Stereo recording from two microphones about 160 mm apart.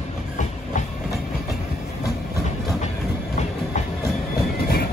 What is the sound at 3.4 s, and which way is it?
Train, 45° left (ahead or behind).